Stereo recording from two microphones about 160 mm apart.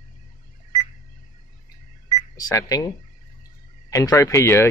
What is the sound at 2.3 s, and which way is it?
Speech, 20° left (ahead or behind).